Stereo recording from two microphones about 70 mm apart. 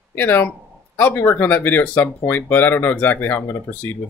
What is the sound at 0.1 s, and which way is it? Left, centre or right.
Speech, left.